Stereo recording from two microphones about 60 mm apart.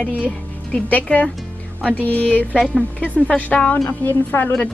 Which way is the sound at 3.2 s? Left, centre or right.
Left.